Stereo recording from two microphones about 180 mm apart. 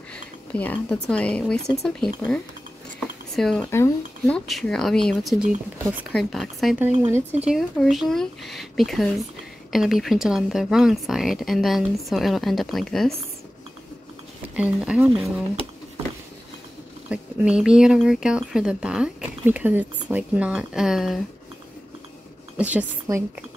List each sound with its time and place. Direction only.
0.1 s speech: 10° left (ahead or behind)
3.0 s a sound: centre (ahead or behind)
3.7 s speech: 15° left (ahead or behind)
4.5 s speech: centre (ahead or behind)
7.0 s speech: 15° right (ahead or behind)
7.4 s speech: centre (ahead or behind)
14.5 s speech: 5° right (ahead or behind)
17.1 s speech: 5° right (ahead or behind)
22.6 s speech: 10° right (ahead or behind)
23.1 s a woman's voice: 20° right (ahead or behind)